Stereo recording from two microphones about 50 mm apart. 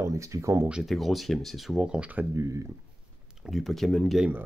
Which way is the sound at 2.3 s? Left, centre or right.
Right.